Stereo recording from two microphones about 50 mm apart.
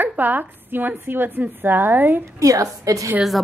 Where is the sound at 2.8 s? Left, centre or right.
Right.